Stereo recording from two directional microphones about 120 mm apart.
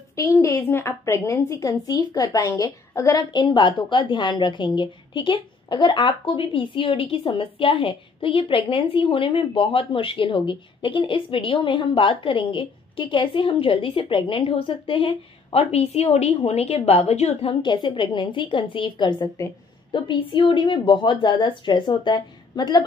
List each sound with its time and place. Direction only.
0.1 s a woman's voice: 25° left (ahead or behind); by 17.6 s 60° left (ahead or behind)
17.6 s a woman's voice: 40° left (ahead or behind)